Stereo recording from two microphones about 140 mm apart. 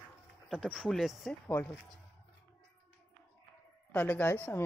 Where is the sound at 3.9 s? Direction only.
10° left (ahead or behind).